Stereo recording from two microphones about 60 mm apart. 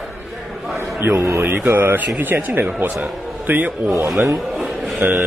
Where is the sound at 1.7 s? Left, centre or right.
Right.